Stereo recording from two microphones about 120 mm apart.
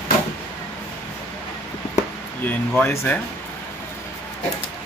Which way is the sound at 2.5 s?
15° left (ahead or behind).